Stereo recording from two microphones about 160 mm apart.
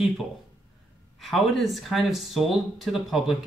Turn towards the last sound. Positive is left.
turn(degrees=0)  # may be behind; listen again after turning